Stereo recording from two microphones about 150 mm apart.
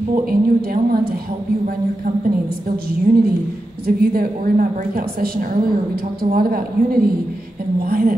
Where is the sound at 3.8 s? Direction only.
80° right.